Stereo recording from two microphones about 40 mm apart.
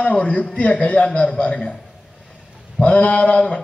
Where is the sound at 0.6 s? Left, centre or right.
Left.